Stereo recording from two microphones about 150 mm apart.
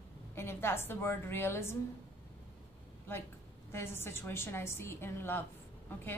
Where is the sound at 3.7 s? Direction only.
15° left (ahead or behind).